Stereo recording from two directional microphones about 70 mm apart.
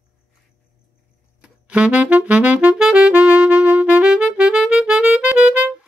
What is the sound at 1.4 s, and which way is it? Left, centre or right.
Music, centre.